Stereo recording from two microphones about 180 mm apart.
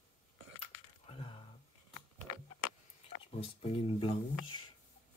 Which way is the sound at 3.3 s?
30° left (ahead or behind).